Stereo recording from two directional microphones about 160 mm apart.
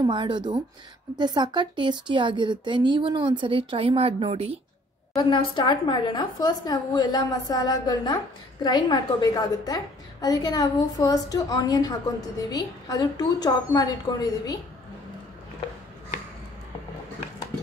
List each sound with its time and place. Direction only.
0.0 s speech: 30° right (ahead or behind)
5.1 s a woman's voice: 30° left (ahead or behind)